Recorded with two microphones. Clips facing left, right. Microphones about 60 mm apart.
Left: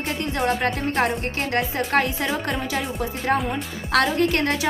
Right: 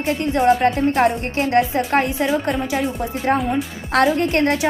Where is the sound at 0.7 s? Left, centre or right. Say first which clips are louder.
Right 6 dB; centre.